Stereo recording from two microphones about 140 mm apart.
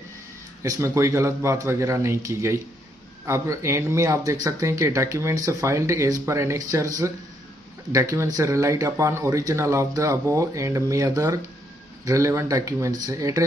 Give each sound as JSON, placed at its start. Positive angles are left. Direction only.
{"t": 0.6, "sound": "speech", "side_deg": -20}
{"t": 7.9, "sound": "speech", "side_deg": -20}